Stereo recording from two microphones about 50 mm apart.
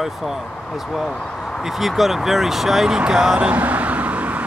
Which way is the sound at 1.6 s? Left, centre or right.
Centre.